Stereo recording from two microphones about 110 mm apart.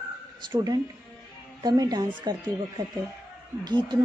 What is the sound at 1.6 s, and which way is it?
Speech, 35° right (ahead or behind).